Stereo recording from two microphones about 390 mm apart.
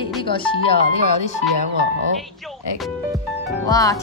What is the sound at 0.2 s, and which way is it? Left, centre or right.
Speech, centre.